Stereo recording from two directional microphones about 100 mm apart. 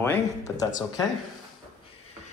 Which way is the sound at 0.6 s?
35° left (ahead or behind).